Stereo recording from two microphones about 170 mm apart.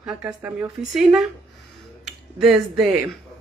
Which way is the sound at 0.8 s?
Centre (ahead or behind).